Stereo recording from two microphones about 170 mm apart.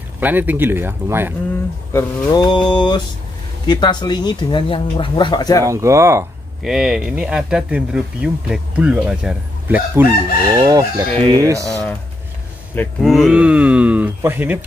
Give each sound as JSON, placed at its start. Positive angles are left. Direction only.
{"t": 0.2, "sound": "speech", "side_deg": -10}
{"t": 1.9, "sound": "speech", "side_deg": 20}
{"t": 5.6, "sound": "speech", "side_deg": -20}
{"t": 6.6, "sound": "speech", "side_deg": 0}
{"t": 10.6, "sound": "chicken", "side_deg": -25}
{"t": 12.7, "sound": "speech", "side_deg": 0}